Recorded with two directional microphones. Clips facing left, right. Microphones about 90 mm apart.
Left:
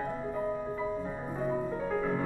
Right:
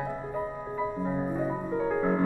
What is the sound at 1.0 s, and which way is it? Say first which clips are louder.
Music: right 5 dB; 15° right (ahead or behind).